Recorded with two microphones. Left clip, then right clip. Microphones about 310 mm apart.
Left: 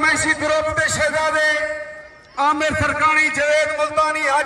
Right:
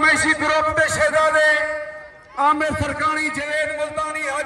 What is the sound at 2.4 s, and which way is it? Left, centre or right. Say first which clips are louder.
A man's voice: left 1 dB; centre.